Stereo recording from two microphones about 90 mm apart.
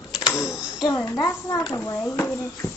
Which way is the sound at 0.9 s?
35° left (ahead or behind).